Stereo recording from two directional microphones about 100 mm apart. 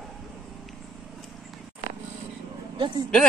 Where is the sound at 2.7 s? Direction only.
55° right (ahead or behind).